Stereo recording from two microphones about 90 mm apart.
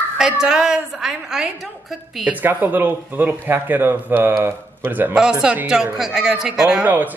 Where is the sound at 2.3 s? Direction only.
20° right (ahead or behind).